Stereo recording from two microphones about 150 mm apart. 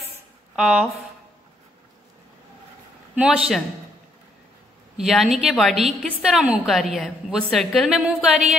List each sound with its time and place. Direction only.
0.6 s a woman's voice: 5° right (ahead or behind)
3.2 s a woman's voice: 5° right (ahead or behind)
4.9 s a woman's voice: centre (ahead or behind)
8.0 s a sound: 5° right (ahead or behind)